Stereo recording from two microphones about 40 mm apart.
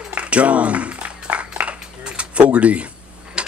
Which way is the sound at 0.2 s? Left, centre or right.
Right.